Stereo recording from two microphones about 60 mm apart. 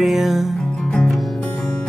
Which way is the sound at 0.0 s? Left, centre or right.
Centre.